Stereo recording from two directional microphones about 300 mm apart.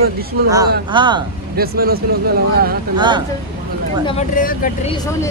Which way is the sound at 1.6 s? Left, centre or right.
Right.